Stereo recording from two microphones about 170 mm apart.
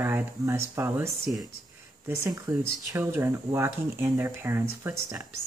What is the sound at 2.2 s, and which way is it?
Speech, 20° right (ahead or behind).